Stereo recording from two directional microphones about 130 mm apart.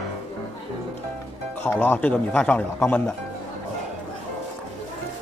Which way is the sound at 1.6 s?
15° left (ahead or behind).